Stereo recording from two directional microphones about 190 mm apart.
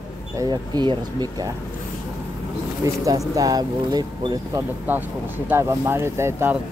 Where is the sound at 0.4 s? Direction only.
20° right (ahead or behind).